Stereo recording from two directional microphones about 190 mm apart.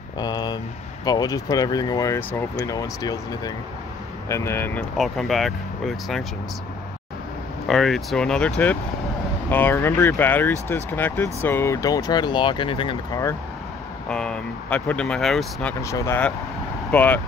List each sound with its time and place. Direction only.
0.2 s speech: 20° left (ahead or behind)
4.9 s speech: centre (ahead or behind)
7.6 s speech: centre (ahead or behind); by 13.2 s 25° left (ahead or behind)
14.0 s speech: 5° left (ahead or behind)
15.8 s speech: 15° left (ahead or behind)